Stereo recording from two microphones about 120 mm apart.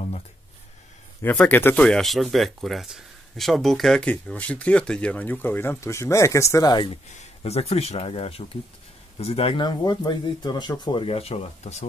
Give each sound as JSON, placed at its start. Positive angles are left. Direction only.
{"t": 1.2, "sound": "speech", "side_deg": 10}
{"t": 1.9, "sound": "speech", "side_deg": 0}
{"t": 7.1, "sound": "speech", "side_deg": 70}